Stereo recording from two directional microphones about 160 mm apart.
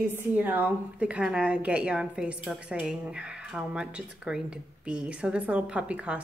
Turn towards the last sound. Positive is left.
turn(degrees=-10)  # may be behind; listen again after turning